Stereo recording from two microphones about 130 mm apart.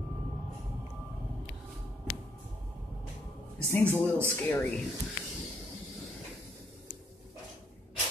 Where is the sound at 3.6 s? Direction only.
20° left (ahead or behind).